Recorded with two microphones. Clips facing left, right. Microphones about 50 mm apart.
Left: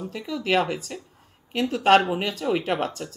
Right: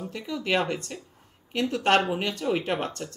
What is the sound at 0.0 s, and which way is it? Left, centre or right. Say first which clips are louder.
Speech: left 2 dB; centre.